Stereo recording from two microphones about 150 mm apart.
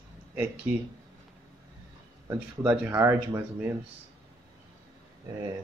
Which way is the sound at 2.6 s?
10° right (ahead or behind).